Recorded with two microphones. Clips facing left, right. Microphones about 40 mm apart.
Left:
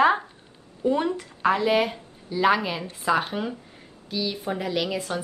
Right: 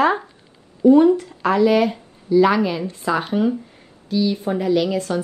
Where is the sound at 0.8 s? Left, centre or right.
Left; by 5.1 s centre.